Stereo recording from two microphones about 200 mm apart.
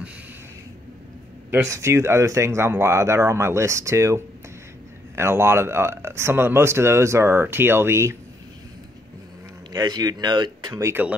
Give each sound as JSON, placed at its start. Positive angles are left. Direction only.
{"t": 1.5, "sound": "speech", "side_deg": -15}
{"t": 9.7, "sound": "speech", "side_deg": -20}